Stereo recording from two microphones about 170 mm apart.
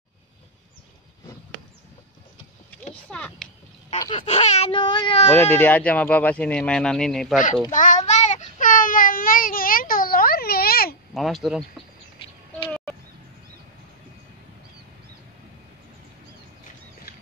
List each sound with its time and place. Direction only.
3.1 s speech: 5° left (ahead or behind)
4.0 s speech: 30° left (ahead or behind)
5.3 s speech: 10° left (ahead or behind)
7.7 s child singing: 50° left (ahead or behind)
11.1 s speech: centre (ahead or behind)